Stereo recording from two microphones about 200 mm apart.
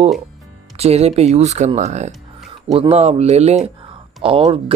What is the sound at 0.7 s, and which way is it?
Speech, 30° right (ahead or behind).